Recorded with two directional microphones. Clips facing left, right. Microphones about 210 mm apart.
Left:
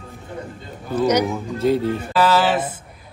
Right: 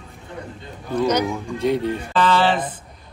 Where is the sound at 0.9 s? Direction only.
10° left (ahead or behind).